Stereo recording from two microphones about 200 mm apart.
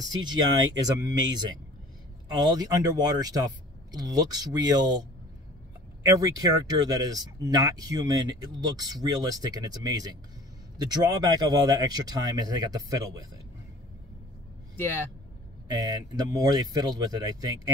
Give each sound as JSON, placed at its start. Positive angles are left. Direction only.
{"t": 0.0, "sound": "speech", "side_deg": -20}
{"t": 6.0, "sound": "speech", "side_deg": -20}
{"t": 15.7, "sound": "speech", "side_deg": -20}